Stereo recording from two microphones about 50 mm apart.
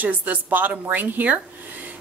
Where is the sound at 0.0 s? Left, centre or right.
Right.